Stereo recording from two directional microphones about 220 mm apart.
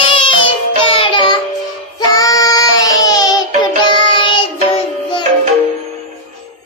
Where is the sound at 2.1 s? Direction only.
15° left (ahead or behind).